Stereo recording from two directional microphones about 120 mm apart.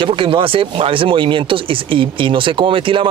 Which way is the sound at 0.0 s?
45° right (ahead or behind).